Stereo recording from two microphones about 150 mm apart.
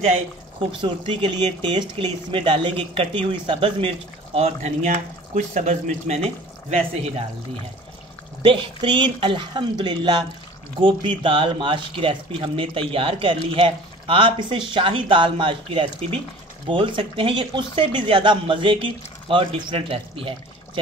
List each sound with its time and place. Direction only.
0.0 s speech: 40° right (ahead or behind)
8.4 s speech: 30° right (ahead or behind)